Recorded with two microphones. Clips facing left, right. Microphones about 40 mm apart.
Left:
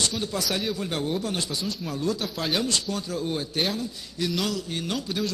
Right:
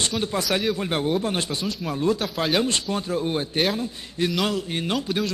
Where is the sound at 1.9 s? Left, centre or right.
Right.